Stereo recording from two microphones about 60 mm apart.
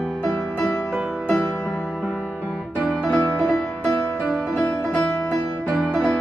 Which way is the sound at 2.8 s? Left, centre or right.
Left.